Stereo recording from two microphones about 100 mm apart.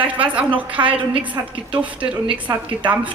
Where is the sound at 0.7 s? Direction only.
60° right (ahead or behind).